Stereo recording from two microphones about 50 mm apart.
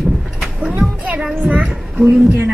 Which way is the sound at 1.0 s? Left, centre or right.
Right.